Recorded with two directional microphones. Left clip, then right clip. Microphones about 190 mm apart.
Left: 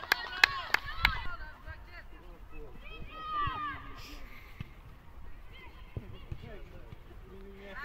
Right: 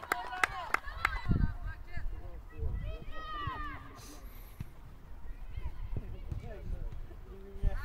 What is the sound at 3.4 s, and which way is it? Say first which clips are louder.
Run: left 5 dB; 45° right (ahead or behind).